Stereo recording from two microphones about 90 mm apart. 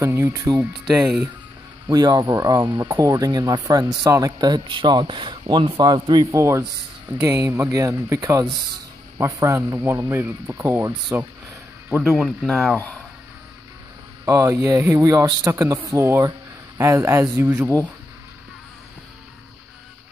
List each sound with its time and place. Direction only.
0.0 s speech: 30° right (ahead or behind)
0.8 s speech: 5° right (ahead or behind)
1.9 s speech: 45° right (ahead or behind)
4.5 s a man's voice: 60° right (ahead or behind)
6.3 s speech: 35° right (ahead or behind)
9.7 s speech: 20° right (ahead or behind)
12.0 s speech: centre (ahead or behind)
14.2 s speech: 30° right (ahead or behind)